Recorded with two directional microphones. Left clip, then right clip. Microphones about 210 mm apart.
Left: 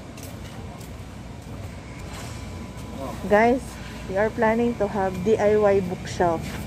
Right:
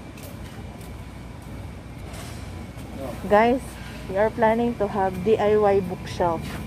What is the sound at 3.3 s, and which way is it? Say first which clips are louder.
Speech: even; 5° right (ahead or behind).